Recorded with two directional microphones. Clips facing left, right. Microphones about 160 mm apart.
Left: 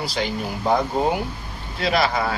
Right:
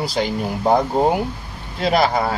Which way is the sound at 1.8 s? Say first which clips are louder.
Right 4 dB; 45° right (ahead or behind).